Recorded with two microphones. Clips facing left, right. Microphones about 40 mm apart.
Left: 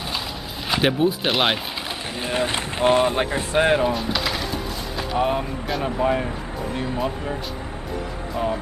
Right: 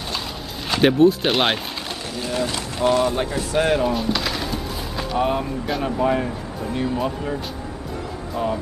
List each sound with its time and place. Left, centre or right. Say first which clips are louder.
0.7 s speech: right 5 dB; centre
2.1 s speech: left 1 dB; left
3.9 s speech: right 1 dB; centre
8.4 s speech: right 1 dB; centre